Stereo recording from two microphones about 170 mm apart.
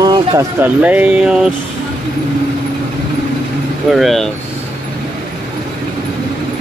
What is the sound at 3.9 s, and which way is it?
Speech, centre (ahead or behind).